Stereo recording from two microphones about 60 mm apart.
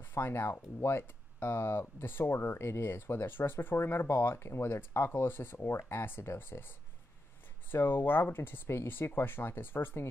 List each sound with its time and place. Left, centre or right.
0.0 s speech: left
7.7 s speech: left